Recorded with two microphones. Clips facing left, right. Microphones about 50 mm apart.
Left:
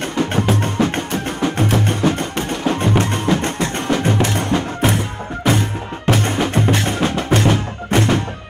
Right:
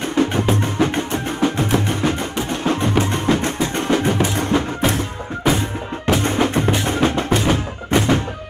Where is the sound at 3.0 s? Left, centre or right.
Centre.